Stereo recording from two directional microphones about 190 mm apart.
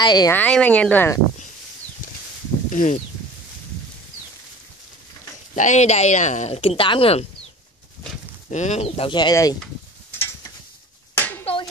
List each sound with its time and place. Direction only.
0.0 s a woman's voice: 20° left (ahead or behind)
0.3 s speech: 5° left (ahead or behind)
2.7 s speech: 45° left (ahead or behind)
5.6 s speech: 40° left (ahead or behind)
8.5 s speech: 40° left (ahead or behind); by 9.6 s 20° left (ahead or behind)
11.1 s clapping: 10° left (ahead or behind)